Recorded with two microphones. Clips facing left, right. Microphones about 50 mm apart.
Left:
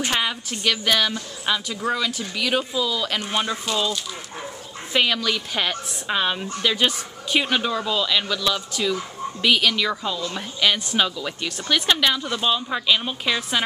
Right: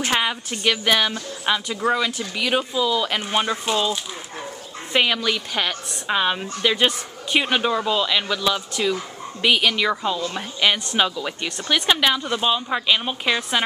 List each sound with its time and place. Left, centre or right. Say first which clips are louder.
0.0 s a woman's voice: right 2 dB; centre